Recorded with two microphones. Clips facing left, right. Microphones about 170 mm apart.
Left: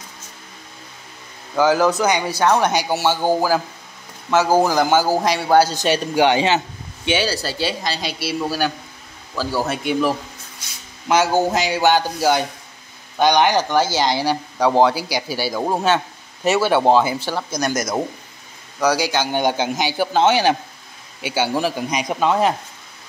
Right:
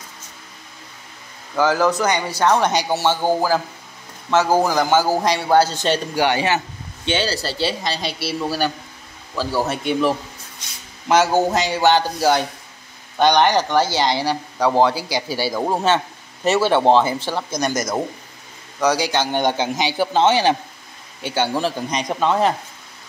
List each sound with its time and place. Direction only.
1.5 s a man's voice: 10° left (ahead or behind)
5.9 s a man's voice: 15° left (ahead or behind)